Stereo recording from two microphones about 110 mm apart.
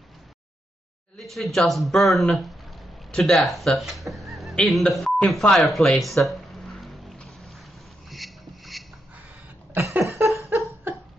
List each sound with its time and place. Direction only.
1.1 s speech: centre (ahead or behind)
4.1 s telephone: centre (ahead or behind)
8.1 s rub: centre (ahead or behind)
9.8 s a sound: 20° right (ahead or behind)